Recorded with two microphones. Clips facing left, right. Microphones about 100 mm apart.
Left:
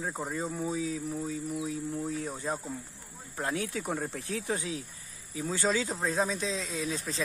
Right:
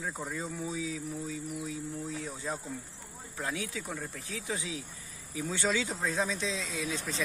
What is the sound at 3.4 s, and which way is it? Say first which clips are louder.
Speech: left 4 dB; 50° left (ahead or behind).